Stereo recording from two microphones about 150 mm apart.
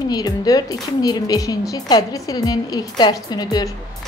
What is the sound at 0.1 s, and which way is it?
A woman's voice, 25° left (ahead or behind).